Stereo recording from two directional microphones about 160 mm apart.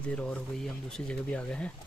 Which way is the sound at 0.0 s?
5° left (ahead or behind).